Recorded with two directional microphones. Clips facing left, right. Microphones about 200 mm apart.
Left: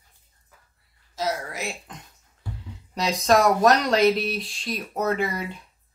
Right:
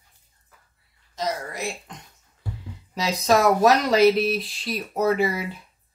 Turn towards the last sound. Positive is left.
turn(degrees=-5)  # may be behind; listen again after turning